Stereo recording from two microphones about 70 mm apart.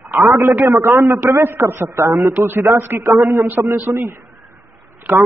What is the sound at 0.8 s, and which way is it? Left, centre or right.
A man's voice, right.